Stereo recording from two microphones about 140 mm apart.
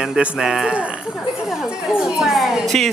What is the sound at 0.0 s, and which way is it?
A woman's voice, 5° right (ahead or behind).